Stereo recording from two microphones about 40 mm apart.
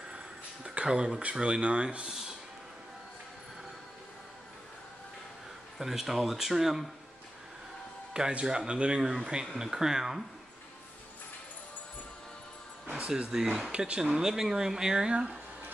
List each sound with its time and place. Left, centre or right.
0.7 s speech: right
2.0 s a sound: centre
5.8 s speech: centre
8.1 s speech: right
13.3 s speech: centre
13.7 s speech: right